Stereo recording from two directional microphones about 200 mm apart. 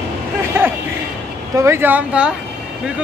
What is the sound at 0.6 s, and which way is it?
Vehicle, 10° right (ahead or behind).